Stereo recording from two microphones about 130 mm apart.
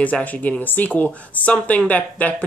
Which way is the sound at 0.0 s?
10° left (ahead or behind).